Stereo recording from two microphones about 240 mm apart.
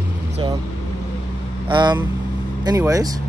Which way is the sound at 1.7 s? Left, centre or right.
Centre.